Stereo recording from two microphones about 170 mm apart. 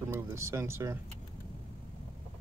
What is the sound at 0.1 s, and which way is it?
Speech, 15° right (ahead or behind).